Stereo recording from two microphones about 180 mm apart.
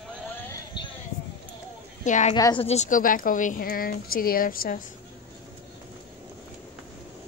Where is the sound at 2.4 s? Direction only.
25° left (ahead or behind).